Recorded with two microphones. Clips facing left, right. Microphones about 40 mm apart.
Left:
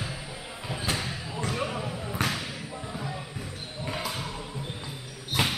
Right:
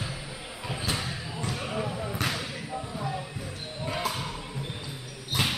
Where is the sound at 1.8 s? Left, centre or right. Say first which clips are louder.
Right 2 dB; centre.